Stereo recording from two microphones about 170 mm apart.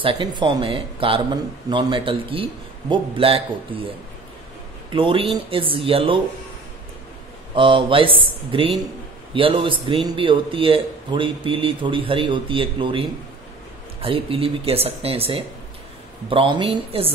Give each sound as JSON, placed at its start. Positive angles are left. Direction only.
{"t": 0.0, "sound": "speech", "side_deg": -30}
{"t": 4.9, "sound": "speech", "side_deg": -30}
{"t": 7.5, "sound": "speech", "side_deg": -30}
{"t": 14.0, "sound": "speech", "side_deg": -35}